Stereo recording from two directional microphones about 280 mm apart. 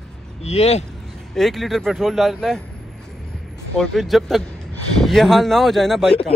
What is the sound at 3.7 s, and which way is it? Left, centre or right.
Speech, centre.